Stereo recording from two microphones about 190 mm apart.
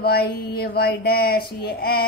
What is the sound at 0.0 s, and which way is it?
A woman's voice, 55° left (ahead or behind).